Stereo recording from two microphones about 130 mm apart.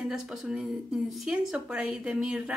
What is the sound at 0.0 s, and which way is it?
Speech, 5° right (ahead or behind).